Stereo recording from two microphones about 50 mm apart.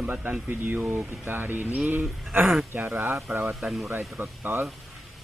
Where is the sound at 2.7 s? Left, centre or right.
Right.